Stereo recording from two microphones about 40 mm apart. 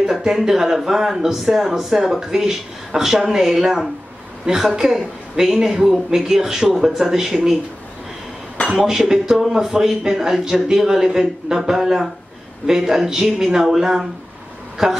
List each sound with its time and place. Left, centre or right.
0.0 s speech: centre
8.6 s speech: centre